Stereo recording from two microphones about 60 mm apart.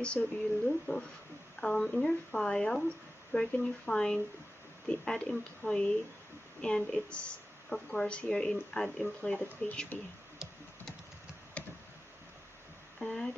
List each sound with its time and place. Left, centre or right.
0.0 s speech: centre
9.2 s speech: left
11.6 s tick-tock: left
13.0 s a sound: centre